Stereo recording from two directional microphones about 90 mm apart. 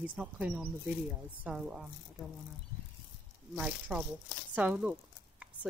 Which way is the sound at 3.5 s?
10° right (ahead or behind).